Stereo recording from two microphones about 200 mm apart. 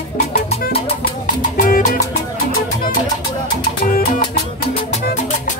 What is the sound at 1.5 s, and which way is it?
Salsa music, 40° left (ahead or behind).